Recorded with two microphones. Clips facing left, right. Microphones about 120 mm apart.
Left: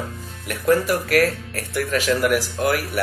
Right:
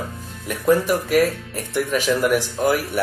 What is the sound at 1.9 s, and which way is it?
Speech, 15° right (ahead or behind).